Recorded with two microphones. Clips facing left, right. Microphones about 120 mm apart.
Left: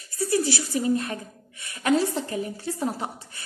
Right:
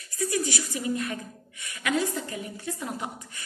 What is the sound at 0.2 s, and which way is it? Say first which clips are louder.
A woman's voice: left 4 dB; 30° left (ahead or behind).